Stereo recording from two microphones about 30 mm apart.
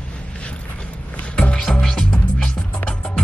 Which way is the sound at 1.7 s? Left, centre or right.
Left.